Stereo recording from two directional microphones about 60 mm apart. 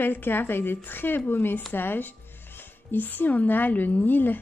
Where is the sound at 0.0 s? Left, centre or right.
Left.